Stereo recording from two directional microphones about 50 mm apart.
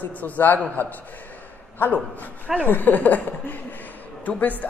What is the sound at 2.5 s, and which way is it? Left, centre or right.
A woman's voice, left.